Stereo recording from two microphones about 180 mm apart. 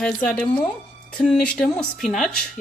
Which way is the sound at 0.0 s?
5° left (ahead or behind).